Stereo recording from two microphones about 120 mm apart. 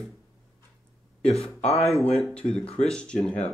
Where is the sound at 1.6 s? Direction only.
60° left (ahead or behind).